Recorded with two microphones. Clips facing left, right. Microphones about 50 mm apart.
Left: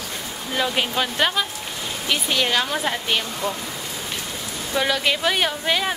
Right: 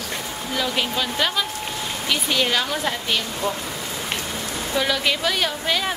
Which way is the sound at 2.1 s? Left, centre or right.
Centre.